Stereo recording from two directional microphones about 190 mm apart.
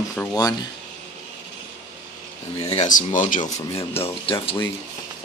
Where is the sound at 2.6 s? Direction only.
35° left (ahead or behind).